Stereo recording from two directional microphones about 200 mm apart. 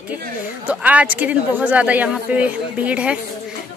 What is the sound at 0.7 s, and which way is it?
Speech, 5° right (ahead or behind).